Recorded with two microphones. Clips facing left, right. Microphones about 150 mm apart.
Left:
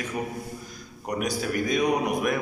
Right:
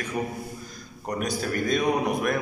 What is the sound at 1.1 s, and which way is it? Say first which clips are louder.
Speech: even; 15° left (ahead or behind).